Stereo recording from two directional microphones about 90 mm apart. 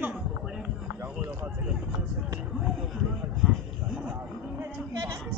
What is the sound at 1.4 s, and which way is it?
Speech, 5° right (ahead or behind).